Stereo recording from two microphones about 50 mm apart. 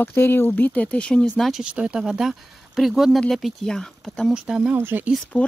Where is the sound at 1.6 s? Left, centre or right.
Right.